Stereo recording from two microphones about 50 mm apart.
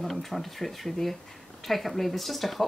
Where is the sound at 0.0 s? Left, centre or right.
Centre.